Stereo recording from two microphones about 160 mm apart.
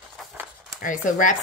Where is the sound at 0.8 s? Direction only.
55° left (ahead or behind).